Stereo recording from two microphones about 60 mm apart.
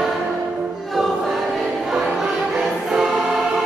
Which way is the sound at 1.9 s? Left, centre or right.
Centre.